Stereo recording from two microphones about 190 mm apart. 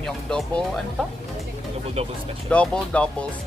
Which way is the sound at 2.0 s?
30° right (ahead or behind).